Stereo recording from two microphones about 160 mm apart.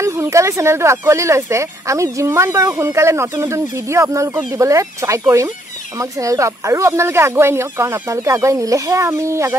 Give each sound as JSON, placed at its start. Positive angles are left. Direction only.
{"t": 0.0, "sound": "speech", "side_deg": -20}